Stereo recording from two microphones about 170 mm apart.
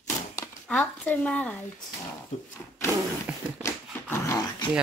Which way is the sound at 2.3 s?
45° left (ahead or behind).